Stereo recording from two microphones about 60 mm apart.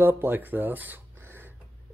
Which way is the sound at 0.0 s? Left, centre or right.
Right.